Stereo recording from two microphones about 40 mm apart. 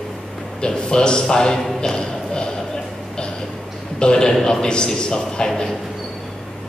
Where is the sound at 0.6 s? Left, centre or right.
Left.